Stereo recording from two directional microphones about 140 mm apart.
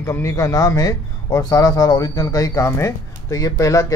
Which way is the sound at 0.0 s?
20° left (ahead or behind).